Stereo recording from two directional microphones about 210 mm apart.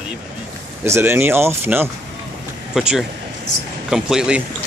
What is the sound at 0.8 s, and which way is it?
A man's voice, 10° right (ahead or behind).